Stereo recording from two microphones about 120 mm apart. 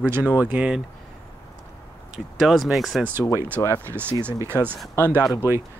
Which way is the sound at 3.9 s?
20° right (ahead or behind).